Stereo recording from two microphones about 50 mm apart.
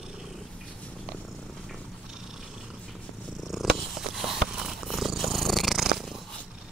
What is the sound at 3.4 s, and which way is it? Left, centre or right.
Purr, centre.